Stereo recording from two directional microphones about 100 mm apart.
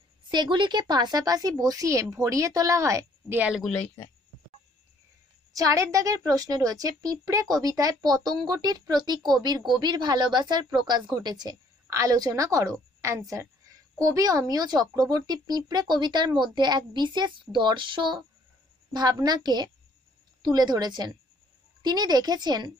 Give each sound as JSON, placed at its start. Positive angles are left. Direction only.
{"t": 0.3, "sound": "a woman's voice", "side_deg": -50}
{"t": 3.7, "sound": "speech", "side_deg": 15}
{"t": 5.5, "sound": "a woman's voice", "side_deg": -35}